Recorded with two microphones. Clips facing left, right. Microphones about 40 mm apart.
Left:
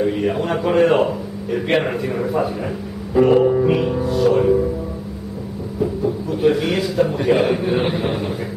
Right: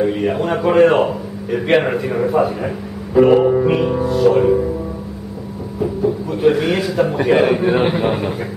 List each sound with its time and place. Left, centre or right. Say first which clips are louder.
0.0 s a man's voice: right 2 dB; centre
5.8 s a man's voice: right 2 dB; centre